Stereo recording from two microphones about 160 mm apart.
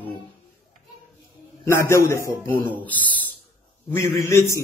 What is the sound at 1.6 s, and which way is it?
Speech, 15° left (ahead or behind).